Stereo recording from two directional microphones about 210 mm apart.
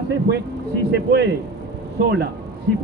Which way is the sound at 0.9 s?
60° right (ahead or behind).